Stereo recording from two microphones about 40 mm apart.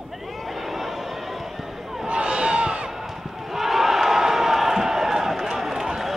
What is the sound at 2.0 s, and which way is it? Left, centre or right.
Crowd, right.